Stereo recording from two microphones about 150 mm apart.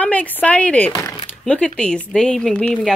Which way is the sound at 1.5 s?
5° left (ahead or behind).